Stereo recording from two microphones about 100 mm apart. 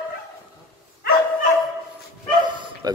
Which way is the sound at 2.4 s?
50° right (ahead or behind).